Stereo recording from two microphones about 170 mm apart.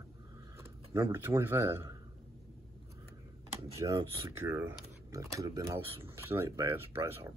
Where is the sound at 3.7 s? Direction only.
20° right (ahead or behind).